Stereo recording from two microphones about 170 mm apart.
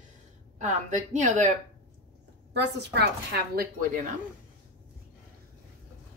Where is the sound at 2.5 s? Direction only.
80° right.